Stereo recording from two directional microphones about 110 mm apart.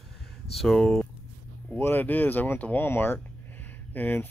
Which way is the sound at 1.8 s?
20° left (ahead or behind).